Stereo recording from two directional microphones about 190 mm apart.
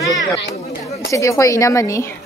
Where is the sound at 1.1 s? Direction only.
15° left (ahead or behind).